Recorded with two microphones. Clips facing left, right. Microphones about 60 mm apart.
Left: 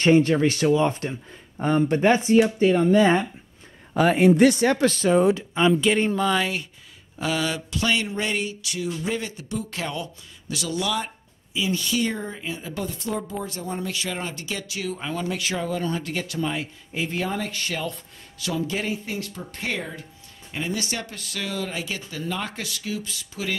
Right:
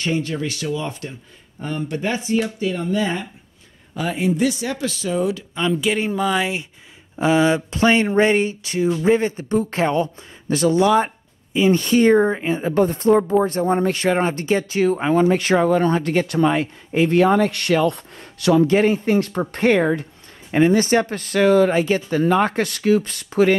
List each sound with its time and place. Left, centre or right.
0.0 s speech: left
5.5 s speech: centre
5.8 s a woman's voice: centre; by 19.9 s right
20.5 s a woman's voice: right